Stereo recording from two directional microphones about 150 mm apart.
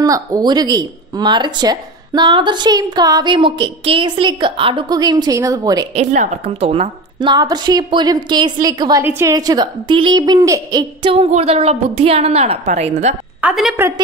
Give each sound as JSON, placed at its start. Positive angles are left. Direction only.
{"t": 0.0, "sound": "a woman's voice", "side_deg": -25}
{"t": 5.9, "sound": "a woman's voice", "side_deg": -50}
{"t": 11.0, "sound": "a woman's voice", "side_deg": -40}
{"t": 13.4, "sound": "a woman's voice", "side_deg": -5}
{"t": 13.7, "sound": "a woman's voice", "side_deg": -20}